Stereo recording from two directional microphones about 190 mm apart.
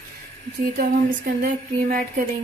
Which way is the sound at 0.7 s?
50° right (ahead or behind).